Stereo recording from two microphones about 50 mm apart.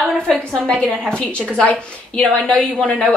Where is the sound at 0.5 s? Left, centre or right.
Centre.